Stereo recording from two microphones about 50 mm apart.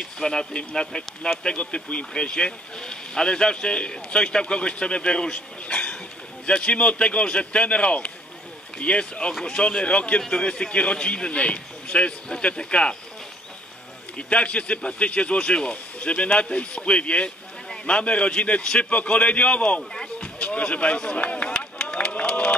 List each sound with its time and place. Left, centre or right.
0.0 s speech: centre
14.1 s speech: left
18.9 s speech: left
21.8 s a sound: left